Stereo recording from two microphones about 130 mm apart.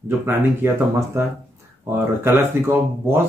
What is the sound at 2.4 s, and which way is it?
Speech, 15° right (ahead or behind).